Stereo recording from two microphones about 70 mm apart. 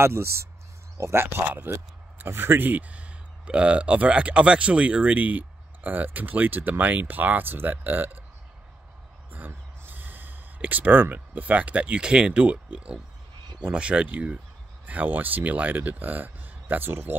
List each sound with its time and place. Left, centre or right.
0.0 s speech: right
1.7 s speech: right
9.3 s speech: right